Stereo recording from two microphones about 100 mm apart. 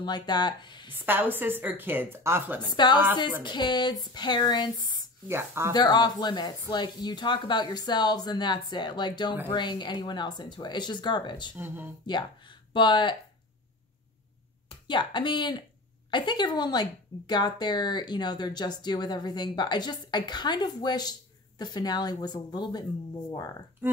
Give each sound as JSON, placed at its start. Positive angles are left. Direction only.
{"t": 0.0, "sound": "speech", "side_deg": 45}
{"t": 0.9, "sound": "a woman's voice", "side_deg": -20}
{"t": 2.6, "sound": "speech", "side_deg": 50}
{"t": 5.3, "sound": "a woman's voice", "side_deg": -25}
{"t": 5.7, "sound": "speech", "side_deg": 45}
{"t": 11.5, "sound": "a woman's voice", "side_deg": -20}
{"t": 12.1, "sound": "speech", "side_deg": 50}
{"t": 14.9, "sound": "speech", "side_deg": 50}